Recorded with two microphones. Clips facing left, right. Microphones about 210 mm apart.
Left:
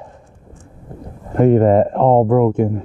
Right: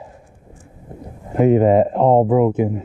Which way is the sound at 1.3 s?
5° right (ahead or behind).